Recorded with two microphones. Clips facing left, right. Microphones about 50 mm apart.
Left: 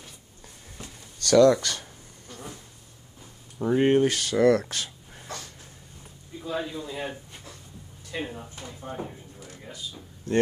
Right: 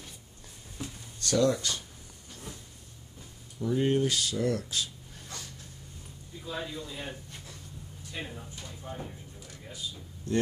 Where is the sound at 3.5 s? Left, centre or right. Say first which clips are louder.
Left 6 dB; left.